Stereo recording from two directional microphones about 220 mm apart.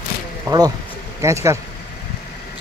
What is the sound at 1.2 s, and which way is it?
Speech, 15° right (ahead or behind).